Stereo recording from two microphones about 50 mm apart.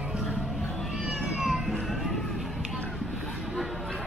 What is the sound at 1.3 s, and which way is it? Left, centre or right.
Music, centre.